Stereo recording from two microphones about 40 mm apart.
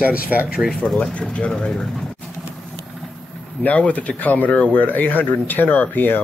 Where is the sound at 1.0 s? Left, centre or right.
Left.